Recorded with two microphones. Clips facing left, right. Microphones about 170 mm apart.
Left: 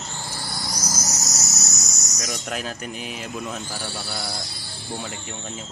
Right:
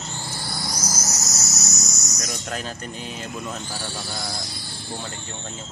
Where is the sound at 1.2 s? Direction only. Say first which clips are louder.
Even; 20° left (ahead or behind).